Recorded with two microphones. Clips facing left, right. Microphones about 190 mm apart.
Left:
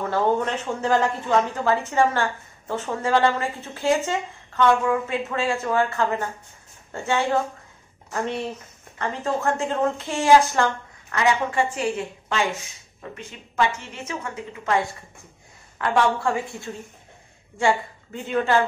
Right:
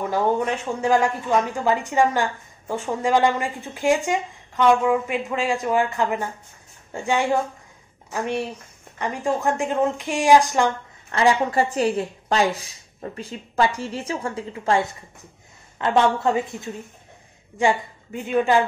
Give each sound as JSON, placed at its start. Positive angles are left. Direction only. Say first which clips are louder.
{"t": 0.0, "sound": "a woman's voice", "louder": "even", "side_deg": -10}
{"t": 11.1, "sound": "a woman's voice", "louder": "right 3 dB", "side_deg": -30}